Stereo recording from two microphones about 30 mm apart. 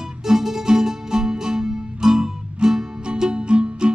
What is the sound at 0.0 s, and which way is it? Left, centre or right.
Music, centre.